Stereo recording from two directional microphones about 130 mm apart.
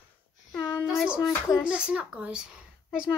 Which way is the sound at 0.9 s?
5° right (ahead or behind).